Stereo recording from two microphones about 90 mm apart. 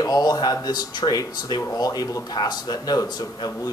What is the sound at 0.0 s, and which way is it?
Speech, 45° left (ahead or behind).